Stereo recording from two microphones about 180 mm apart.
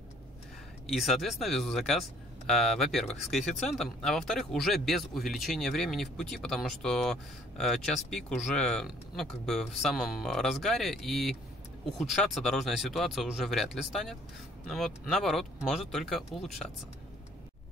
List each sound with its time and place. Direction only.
0.9 s speech: centre (ahead or behind)